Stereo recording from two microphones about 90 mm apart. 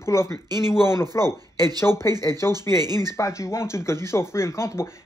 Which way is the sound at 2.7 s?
50° right (ahead or behind).